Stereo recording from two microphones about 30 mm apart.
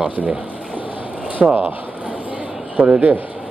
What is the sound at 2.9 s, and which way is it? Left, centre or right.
Speech, right.